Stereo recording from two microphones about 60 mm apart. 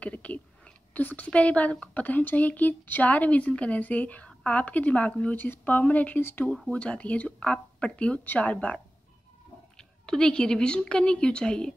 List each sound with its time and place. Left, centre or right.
0.0 s speech: left
6.7 s a woman's voice: left